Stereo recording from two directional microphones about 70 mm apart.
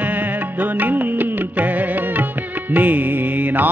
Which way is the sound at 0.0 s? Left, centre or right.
Right.